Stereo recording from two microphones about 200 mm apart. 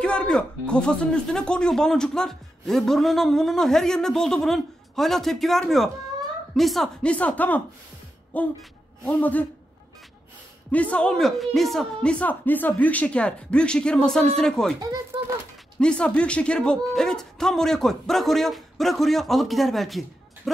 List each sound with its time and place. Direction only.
0.0 s a man's voice: 5° left (ahead or behind)
10.7 s speech: 5° left (ahead or behind)
14.8 s speech: 15° right (ahead or behind)
15.8 s speech: 5° left (ahead or behind)